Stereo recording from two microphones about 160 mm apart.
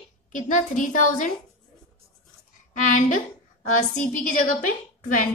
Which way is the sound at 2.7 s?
55° left (ahead or behind).